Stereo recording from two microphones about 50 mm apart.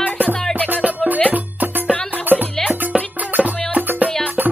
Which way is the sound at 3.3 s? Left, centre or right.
Right.